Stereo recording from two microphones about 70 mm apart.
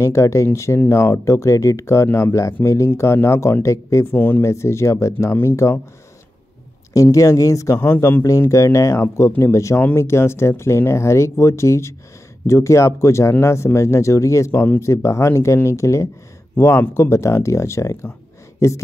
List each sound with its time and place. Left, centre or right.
0.0 s speech: left
4.1 s speech: left
4.4 s speech: left
6.9 s speech: left